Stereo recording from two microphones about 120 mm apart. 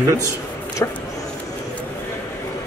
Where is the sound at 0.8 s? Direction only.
25° left (ahead or behind).